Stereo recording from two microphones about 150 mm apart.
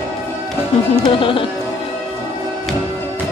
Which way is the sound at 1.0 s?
35° left (ahead or behind).